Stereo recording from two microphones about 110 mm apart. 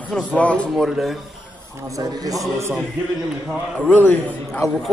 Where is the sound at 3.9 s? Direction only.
15° left (ahead or behind).